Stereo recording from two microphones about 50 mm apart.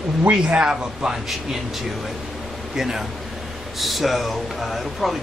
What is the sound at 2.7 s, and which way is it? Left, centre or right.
A man's voice, centre.